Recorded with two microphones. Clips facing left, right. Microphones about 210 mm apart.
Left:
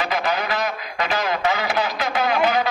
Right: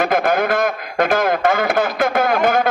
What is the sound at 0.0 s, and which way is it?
A man's voice, 50° right (ahead or behind).